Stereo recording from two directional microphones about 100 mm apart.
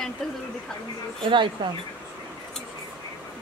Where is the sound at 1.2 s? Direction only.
50° right (ahead or behind).